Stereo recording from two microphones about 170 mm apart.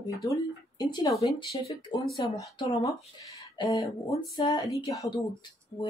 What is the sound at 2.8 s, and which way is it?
Speech, 20° left (ahead or behind).